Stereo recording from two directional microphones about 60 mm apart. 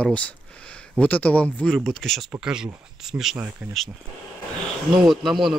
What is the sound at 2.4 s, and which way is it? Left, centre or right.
Speech, centre.